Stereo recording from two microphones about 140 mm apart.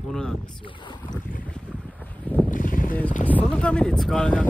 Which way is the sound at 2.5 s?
70° left (ahead or behind).